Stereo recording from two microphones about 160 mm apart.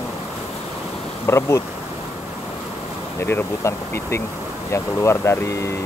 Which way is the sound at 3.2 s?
15° left (ahead or behind).